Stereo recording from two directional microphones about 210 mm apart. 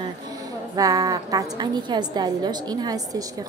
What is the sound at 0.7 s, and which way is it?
A woman's voice, 15° right (ahead or behind).